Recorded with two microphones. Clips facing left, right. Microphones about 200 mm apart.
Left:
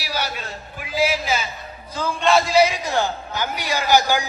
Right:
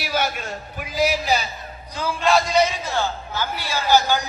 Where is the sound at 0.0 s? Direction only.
50° right (ahead or behind).